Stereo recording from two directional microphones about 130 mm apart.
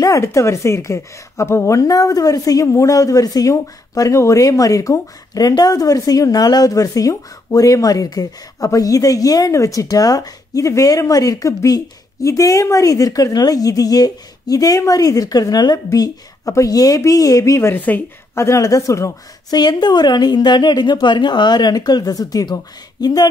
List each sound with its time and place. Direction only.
0.0 s a woman's voice: 25° left (ahead or behind)